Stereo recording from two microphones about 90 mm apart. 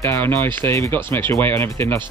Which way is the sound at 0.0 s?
25° left (ahead or behind).